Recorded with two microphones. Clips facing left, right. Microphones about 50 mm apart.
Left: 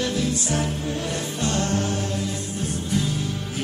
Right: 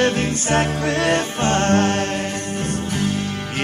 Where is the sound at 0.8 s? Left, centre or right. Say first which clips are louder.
Right 9 dB; right.